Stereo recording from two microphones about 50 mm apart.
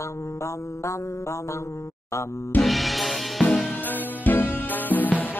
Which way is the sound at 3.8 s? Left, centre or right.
Left.